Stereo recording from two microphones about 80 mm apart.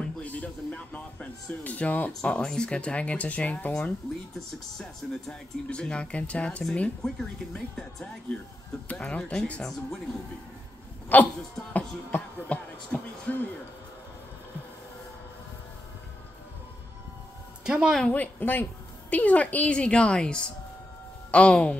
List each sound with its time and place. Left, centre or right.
0.0 s a woman's voice: centre
11.1 s a sound: left
17.6 s speech: centre
18.0 s a woman's voice: centre